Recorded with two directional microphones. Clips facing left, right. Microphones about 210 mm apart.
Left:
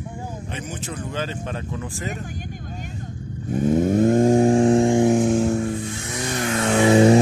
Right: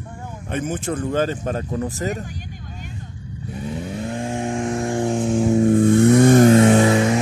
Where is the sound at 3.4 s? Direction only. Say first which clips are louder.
Left 10 dB; 45° left (ahead or behind); by 5.0 s 25° left (ahead or behind).